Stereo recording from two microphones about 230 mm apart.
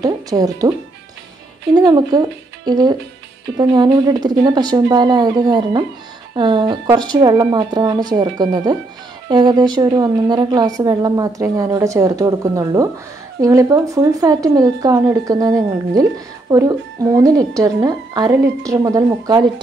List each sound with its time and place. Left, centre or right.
0.0 s a woman's voice: centre